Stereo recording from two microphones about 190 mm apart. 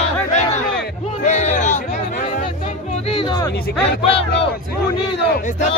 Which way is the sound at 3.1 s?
25° left (ahead or behind).